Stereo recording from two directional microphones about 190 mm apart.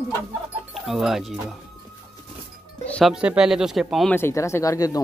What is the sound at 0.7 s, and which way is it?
Speech, centre (ahead or behind).